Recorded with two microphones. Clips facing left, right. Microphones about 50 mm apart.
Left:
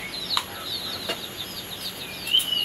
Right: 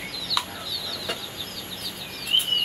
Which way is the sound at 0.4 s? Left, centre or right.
Centre.